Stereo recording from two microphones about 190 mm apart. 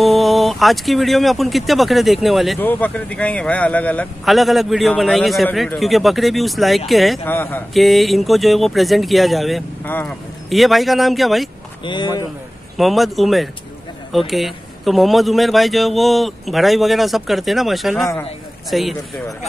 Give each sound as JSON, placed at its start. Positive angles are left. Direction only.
{"t": 0.0, "sound": "a man's voice", "side_deg": 0}
{"t": 11.8, "sound": "speech", "side_deg": 25}
{"t": 12.7, "sound": "a man's voice", "side_deg": 0}